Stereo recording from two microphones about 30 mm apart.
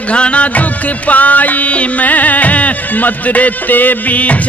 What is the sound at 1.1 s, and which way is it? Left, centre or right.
Music, left.